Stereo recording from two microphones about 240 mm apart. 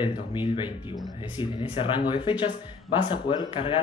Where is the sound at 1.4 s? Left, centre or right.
Left.